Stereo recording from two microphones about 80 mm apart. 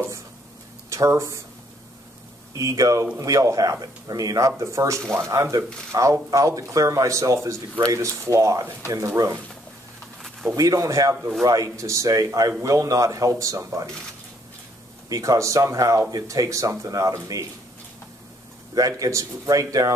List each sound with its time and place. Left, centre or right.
0.8 s speech: right
2.5 s speech: right
10.5 s speech: right
15.0 s speech: right
18.8 s speech: right